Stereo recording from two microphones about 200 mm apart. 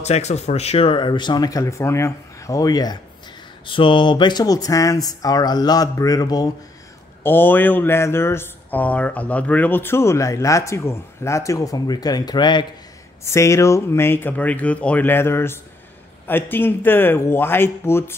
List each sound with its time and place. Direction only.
0.0 s speech: 35° left (ahead or behind); by 18.1 s 10° left (ahead or behind)